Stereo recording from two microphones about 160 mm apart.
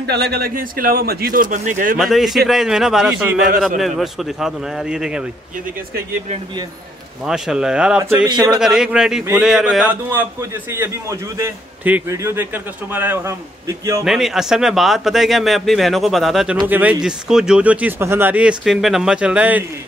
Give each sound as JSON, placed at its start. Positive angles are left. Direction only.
{"t": 0.0, "sound": "speech", "side_deg": -90}
{"t": 2.0, "sound": "speech", "side_deg": 0}
{"t": 7.2, "sound": "speech", "side_deg": -5}
{"t": 10.7, "sound": "speech", "side_deg": -15}
{"t": 14.0, "sound": "speech", "side_deg": 0}